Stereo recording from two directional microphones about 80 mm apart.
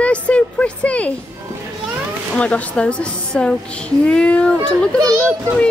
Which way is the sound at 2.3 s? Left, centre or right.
Centre.